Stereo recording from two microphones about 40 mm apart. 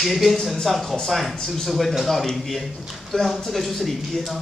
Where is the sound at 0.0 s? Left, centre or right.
Centre.